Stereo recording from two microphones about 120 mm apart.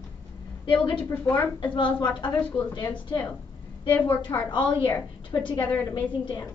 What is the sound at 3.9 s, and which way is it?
Speech, 15° left (ahead or behind).